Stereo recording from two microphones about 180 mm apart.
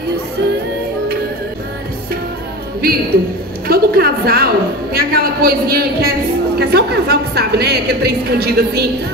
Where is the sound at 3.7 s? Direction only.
55° right (ahead or behind).